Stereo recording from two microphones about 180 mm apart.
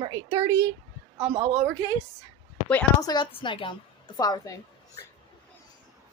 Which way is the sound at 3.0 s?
25° left (ahead or behind).